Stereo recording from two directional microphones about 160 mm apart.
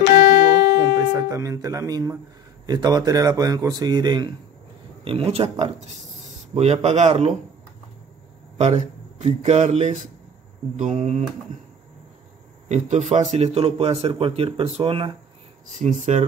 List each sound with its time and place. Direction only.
0.7 s music: 20° right (ahead or behind)
2.6 s speech: 25° right (ahead or behind)
5.0 s a man's voice: 35° right (ahead or behind)
8.5 s speech: 45° right (ahead or behind)
12.6 s a man's voice: 45° right (ahead or behind)
15.7 s speech: 50° right (ahead or behind)